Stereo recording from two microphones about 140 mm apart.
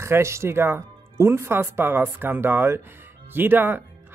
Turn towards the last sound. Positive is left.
turn(degrees=-15)  # may be behind; listen again after turning